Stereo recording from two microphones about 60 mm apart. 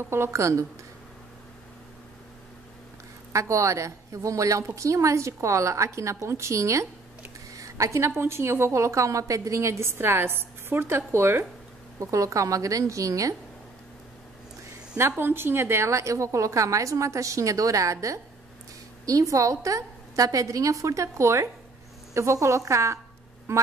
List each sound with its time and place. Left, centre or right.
0.0 s a woman's voice: right
3.3 s a woman's voice: right
7.5 s a sound: right
8.2 s a woman's voice: right
12.0 s a woman's voice: right
15.0 s a woman's voice: right
23.5 s a woman's voice: right